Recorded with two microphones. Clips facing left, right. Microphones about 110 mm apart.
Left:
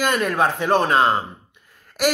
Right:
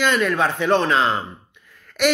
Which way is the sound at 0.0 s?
40° left (ahead or behind).